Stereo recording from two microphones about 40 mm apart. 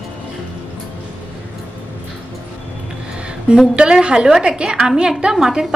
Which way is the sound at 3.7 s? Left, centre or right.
Right.